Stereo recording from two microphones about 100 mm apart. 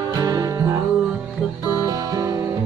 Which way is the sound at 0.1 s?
40° right (ahead or behind).